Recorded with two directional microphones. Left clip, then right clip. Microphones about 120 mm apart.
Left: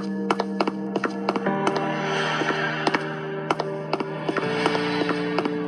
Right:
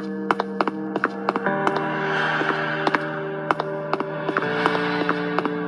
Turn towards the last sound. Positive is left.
turn(degrees=10)  # may be behind; listen again after turning